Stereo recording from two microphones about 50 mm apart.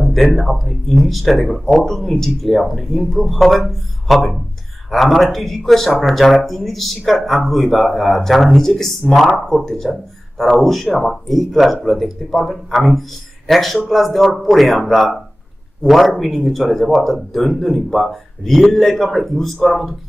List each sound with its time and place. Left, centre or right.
0.0 s speech: centre